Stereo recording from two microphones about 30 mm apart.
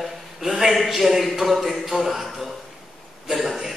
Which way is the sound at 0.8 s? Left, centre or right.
Centre.